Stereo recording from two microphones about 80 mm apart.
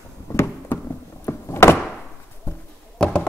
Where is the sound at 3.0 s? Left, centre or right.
Centre.